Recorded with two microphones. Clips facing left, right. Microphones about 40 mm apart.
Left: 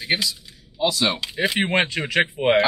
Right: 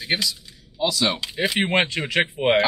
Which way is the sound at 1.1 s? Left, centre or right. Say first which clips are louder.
Left 1 dB; centre.